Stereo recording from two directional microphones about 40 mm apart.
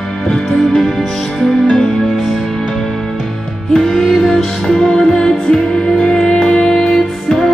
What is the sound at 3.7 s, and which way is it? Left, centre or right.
Music, centre.